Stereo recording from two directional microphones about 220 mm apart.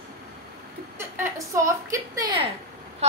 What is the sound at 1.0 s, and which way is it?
A woman's voice, 10° right (ahead or behind).